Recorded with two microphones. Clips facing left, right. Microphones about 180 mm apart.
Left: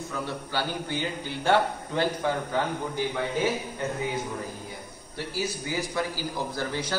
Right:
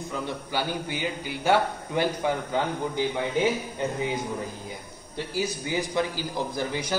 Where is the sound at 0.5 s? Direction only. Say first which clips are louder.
Right 2 dB; 15° right (ahead or behind).